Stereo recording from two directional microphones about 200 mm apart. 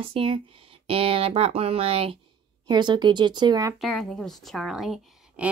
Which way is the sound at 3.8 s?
Centre (ahead or behind).